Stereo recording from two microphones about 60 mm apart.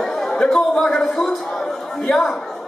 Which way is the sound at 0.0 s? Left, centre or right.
Centre.